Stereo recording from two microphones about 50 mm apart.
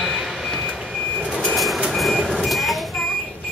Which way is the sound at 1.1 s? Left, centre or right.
Centre.